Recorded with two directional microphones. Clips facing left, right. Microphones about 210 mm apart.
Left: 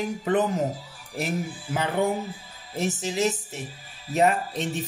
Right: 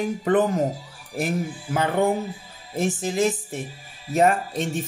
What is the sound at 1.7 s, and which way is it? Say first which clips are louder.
A man's voice: right 3 dB; 50° right (ahead or behind).